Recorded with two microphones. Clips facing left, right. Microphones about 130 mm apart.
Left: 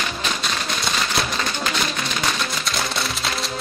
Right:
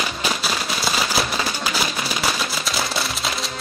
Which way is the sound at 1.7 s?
5° right (ahead or behind).